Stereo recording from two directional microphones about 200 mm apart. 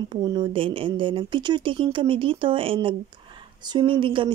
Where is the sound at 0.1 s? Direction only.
20° right (ahead or behind).